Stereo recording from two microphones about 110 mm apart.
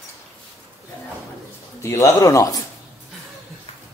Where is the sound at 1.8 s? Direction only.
25° left (ahead or behind).